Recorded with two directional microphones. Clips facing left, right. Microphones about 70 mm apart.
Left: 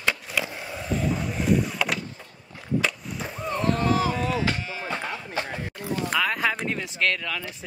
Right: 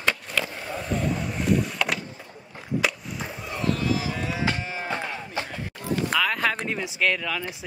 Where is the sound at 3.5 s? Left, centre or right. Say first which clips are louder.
Left 3 dB; left.